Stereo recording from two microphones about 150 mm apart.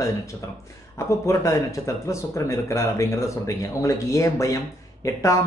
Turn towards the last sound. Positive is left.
turn(degrees=20)  # may be behind; listen again after turning